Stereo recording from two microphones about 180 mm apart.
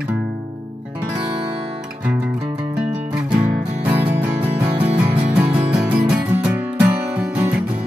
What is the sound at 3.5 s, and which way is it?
Music, 45° right (ahead or behind).